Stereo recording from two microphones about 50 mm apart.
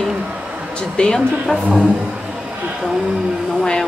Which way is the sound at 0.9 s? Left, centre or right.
Centre.